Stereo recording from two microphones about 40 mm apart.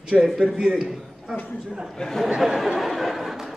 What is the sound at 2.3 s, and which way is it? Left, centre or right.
Speech, centre.